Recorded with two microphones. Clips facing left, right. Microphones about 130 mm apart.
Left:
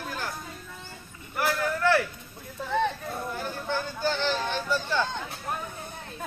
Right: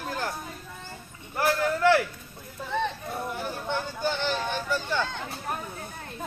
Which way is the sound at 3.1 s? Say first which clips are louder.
Right 1 dB; 10° right (ahead or behind).